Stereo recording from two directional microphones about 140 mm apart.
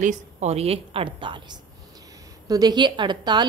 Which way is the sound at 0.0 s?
55° right (ahead or behind).